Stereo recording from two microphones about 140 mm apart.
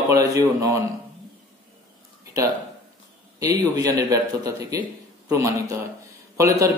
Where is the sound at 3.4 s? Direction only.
25° right (ahead or behind).